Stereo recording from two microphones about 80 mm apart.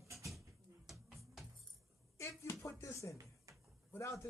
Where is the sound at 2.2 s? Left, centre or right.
Left.